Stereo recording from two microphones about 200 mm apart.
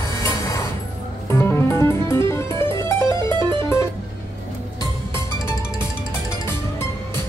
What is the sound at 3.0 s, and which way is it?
Music, 20° right (ahead or behind).